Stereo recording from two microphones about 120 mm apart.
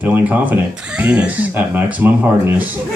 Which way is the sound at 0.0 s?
15° right (ahead or behind).